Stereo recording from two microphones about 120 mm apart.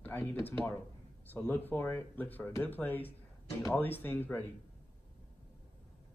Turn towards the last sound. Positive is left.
turn(degrees=15)  # may be behind; listen again after turning